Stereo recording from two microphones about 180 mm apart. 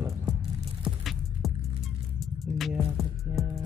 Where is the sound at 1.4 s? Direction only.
Centre (ahead or behind).